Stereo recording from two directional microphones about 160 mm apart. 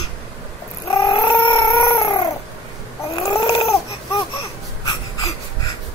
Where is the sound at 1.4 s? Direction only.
25° left (ahead or behind).